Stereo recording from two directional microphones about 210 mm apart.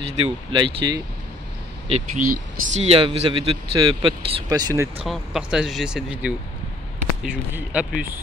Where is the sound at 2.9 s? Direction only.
25° right (ahead or behind).